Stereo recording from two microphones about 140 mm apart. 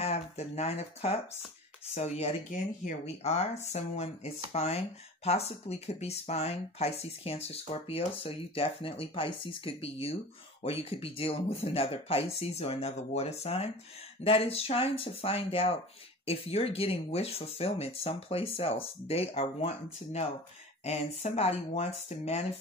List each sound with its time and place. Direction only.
0.0 s speech: 50° left (ahead or behind)
3.7 s speech: 50° left (ahead or behind)